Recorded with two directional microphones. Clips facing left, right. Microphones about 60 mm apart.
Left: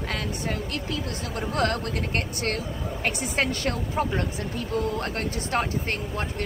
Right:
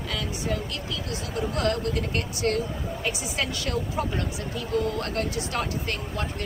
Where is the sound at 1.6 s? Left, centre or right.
Left.